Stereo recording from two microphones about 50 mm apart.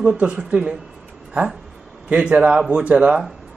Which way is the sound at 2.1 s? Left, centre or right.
Right.